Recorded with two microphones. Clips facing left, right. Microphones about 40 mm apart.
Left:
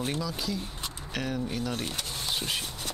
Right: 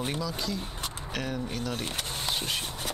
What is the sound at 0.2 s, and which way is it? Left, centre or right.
Speech, centre.